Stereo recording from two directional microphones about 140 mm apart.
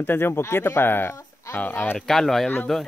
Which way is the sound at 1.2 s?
20° left (ahead or behind).